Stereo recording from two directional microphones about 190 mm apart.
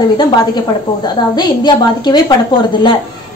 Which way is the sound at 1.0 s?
25° left (ahead or behind).